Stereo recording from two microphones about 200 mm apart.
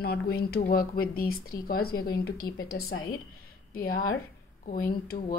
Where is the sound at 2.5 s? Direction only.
90° left.